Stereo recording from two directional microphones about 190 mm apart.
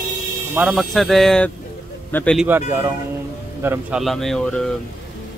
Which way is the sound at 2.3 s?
10° right (ahead or behind).